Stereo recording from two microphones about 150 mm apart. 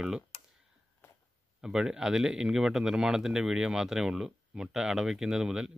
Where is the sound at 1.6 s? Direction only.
5° right (ahead or behind).